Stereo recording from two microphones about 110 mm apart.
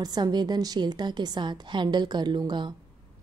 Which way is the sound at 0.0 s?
40° right (ahead or behind).